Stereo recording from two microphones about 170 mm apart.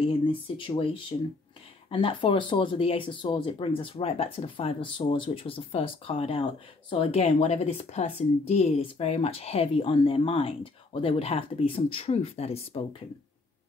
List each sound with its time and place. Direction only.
0.0 s speech: 30° left (ahead or behind)